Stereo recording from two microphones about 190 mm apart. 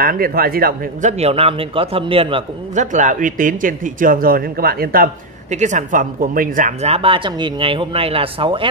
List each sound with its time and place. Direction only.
0.0 s speech: 50° right (ahead or behind)
1.1 s a man's voice: 30° right (ahead or behind)
2.8 s speech: 40° right (ahead or behind)